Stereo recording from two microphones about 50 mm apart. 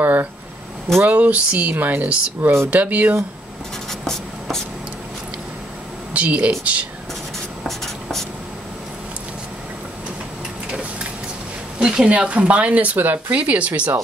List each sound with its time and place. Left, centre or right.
0.0 s a sound: right
1.0 s speech: right
4.0 s writing: centre
6.1 s speech: right
7.3 s writing: centre
11.8 s speech: centre